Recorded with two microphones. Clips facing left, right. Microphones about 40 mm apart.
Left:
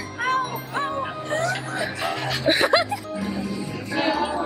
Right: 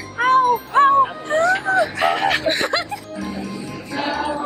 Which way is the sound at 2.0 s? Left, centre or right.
Right.